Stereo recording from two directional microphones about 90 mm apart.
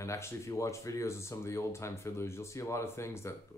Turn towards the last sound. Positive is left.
turn(degrees=30)  # may be behind; listen again after turning